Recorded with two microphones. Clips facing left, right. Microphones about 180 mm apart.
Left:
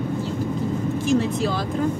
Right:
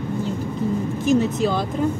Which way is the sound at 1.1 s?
Centre (ahead or behind).